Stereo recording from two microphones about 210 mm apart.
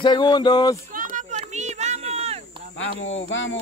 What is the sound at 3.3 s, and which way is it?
Speech, 65° left (ahead or behind).